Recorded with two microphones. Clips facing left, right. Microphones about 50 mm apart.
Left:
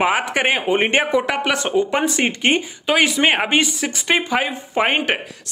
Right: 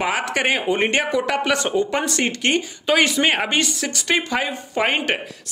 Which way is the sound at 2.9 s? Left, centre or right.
Centre.